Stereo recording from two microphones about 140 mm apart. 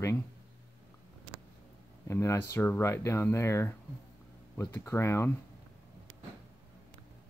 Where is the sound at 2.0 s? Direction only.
20° left (ahead or behind).